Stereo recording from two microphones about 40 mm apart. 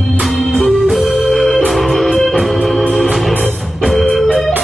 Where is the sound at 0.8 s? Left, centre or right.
Centre.